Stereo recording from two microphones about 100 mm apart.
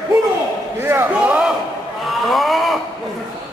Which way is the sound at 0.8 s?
25° right (ahead or behind).